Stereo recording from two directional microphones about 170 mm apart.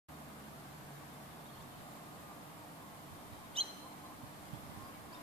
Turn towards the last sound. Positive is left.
turn(degrees=-35)  # may be behind; listen again after turning